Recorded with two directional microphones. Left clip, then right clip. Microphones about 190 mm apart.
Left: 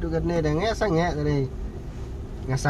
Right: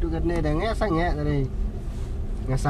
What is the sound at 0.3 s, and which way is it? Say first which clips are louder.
Speech: left 1 dB; centre (ahead or behind).